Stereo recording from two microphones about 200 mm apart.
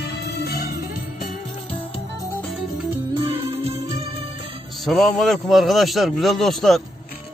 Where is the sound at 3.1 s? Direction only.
25° right (ahead or behind).